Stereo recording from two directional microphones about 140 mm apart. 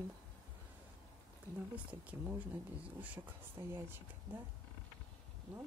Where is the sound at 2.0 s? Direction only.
15° right (ahead or behind).